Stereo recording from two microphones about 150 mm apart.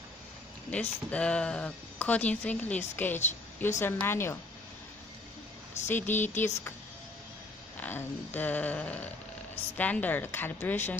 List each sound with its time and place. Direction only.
0.7 s speech: 10° left (ahead or behind)
5.9 s speech: 15° left (ahead or behind)
7.8 s speech: 10° left (ahead or behind)